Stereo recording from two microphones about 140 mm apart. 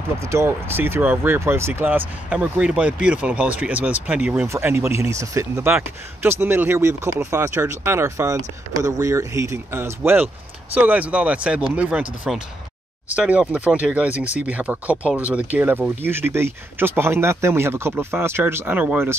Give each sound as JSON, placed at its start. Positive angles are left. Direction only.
{"t": 0.2, "sound": "speech", "side_deg": -20}